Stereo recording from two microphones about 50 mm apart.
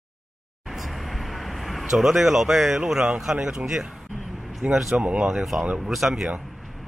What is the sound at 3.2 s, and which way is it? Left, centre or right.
Speech, centre.